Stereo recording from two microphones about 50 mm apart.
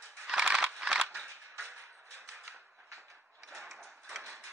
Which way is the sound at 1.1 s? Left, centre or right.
Centre.